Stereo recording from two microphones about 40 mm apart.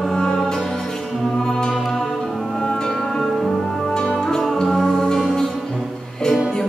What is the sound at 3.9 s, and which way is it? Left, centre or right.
Music, centre.